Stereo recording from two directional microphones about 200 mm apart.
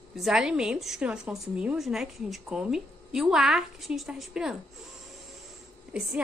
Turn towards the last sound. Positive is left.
turn(degrees=-5)  # may be behind; listen again after turning